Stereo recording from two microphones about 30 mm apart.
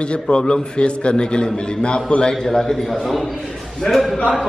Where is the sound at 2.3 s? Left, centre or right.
Centre.